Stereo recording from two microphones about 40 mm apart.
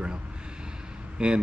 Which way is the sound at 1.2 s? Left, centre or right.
Right.